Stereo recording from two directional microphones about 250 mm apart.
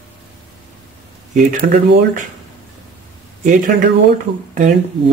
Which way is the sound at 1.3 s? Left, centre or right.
Right.